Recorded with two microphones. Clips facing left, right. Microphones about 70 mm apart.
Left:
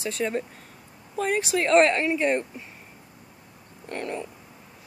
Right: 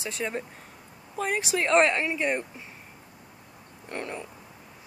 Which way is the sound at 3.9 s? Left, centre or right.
Centre.